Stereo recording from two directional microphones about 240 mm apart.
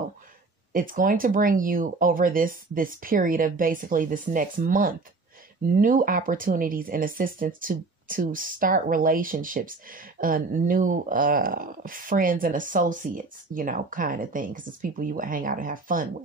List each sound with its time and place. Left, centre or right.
0.7 s speech: right